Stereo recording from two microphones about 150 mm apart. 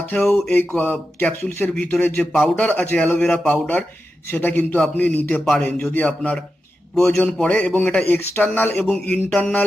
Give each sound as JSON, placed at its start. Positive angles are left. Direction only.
{"t": 0.1, "sound": "speech", "side_deg": 5}